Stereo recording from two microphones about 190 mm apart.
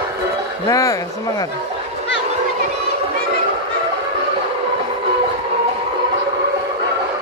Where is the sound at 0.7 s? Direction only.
15° left (ahead or behind).